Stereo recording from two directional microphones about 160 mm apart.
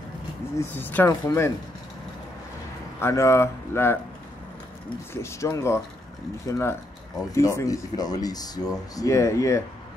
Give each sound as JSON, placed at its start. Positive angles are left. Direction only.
{"t": 0.6, "sound": "speech", "side_deg": 10}
{"t": 3.0, "sound": "speech", "side_deg": 15}